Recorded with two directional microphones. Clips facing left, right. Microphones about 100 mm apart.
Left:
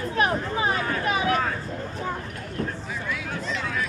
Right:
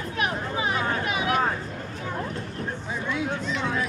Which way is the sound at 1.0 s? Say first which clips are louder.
Left 2 dB; 35° left (ahead or behind).